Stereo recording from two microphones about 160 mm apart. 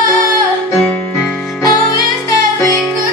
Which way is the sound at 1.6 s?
20° left (ahead or behind).